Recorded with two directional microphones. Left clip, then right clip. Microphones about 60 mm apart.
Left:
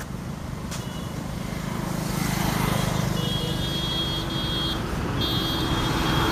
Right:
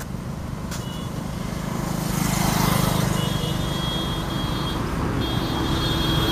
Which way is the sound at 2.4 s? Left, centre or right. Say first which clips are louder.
Right 5 dB; right.